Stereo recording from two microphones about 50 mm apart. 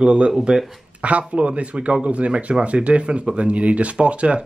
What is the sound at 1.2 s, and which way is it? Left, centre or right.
Speech, right.